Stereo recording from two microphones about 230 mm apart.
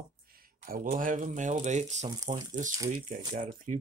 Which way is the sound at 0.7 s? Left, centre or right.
Right.